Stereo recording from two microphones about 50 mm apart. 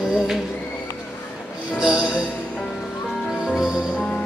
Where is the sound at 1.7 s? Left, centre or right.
Centre.